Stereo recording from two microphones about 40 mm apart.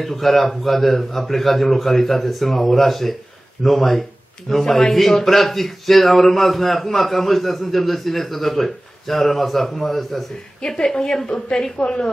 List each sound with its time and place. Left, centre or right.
0.0 s a man's voice: centre
10.8 s a woman's voice: centre